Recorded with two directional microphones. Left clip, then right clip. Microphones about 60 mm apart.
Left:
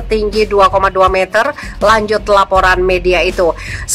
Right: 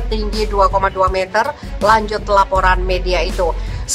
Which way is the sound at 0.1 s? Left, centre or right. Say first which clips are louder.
Left 8 dB; left.